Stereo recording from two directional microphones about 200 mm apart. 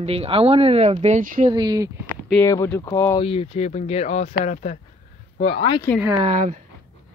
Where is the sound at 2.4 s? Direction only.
15° left (ahead or behind).